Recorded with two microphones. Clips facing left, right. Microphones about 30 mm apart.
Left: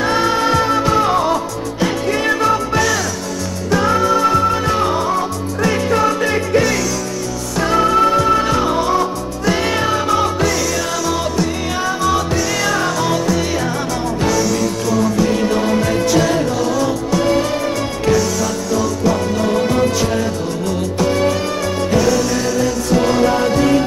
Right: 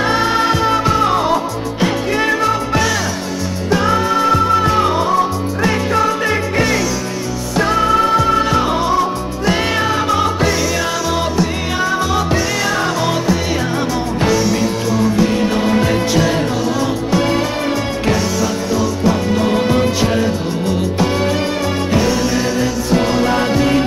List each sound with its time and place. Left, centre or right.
0.0 s music: centre
12.4 s music: centre